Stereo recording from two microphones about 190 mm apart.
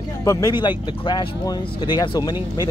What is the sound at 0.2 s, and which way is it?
Speech, 20° left (ahead or behind).